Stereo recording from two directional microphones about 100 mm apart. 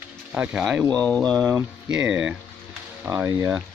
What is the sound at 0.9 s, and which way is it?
Speech, 10° left (ahead or behind).